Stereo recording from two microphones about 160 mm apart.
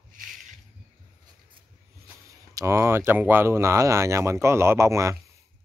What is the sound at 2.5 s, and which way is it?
Speech, 15° right (ahead or behind).